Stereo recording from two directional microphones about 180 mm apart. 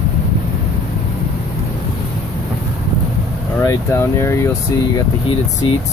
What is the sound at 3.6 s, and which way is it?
Speech, 15° left (ahead or behind).